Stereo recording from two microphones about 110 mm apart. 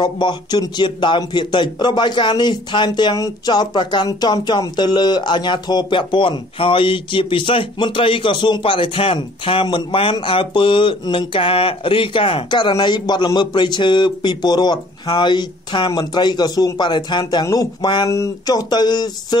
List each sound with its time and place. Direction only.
0.0 s speech: 45° left (ahead or behind)